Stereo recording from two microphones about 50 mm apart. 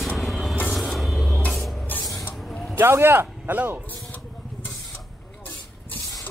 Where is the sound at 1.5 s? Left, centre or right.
Centre.